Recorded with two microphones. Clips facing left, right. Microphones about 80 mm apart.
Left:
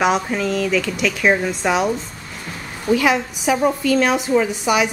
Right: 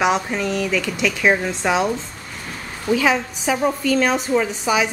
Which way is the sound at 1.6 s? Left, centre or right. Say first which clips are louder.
Even; centre.